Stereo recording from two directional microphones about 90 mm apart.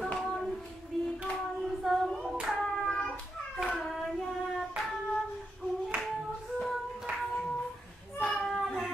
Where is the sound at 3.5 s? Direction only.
Centre (ahead or behind).